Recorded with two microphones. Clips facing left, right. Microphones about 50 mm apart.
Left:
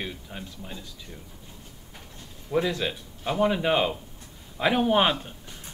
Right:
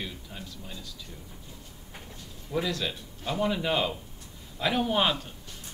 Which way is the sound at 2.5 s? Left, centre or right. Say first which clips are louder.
Left 4 dB; left.